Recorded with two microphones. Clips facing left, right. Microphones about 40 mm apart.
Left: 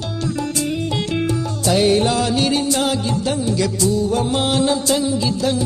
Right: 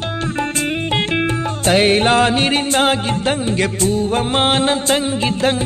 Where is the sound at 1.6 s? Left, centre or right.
Right.